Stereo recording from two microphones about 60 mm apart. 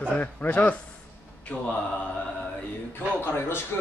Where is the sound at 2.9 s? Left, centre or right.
Left.